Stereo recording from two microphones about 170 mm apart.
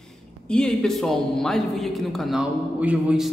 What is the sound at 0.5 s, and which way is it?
A man's voice, 5° left (ahead or behind).